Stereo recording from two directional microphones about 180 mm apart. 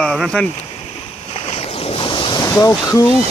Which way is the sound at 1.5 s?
30° left (ahead or behind).